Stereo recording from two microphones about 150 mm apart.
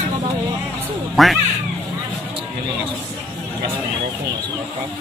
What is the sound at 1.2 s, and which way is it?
Speech, centre (ahead or behind).